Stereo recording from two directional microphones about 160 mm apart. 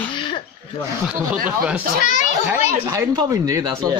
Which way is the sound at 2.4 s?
15° right (ahead or behind).